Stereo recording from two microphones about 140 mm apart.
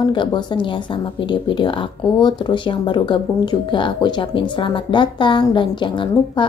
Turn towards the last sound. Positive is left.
turn(degrees=35)  # may be behind; listen again after turning